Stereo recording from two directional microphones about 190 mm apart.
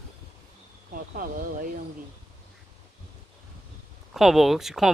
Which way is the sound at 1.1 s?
45° right (ahead or behind).